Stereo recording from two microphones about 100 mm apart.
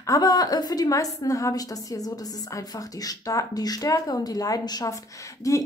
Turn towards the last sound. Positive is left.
turn(degrees=35)  # may be behind; listen again after turning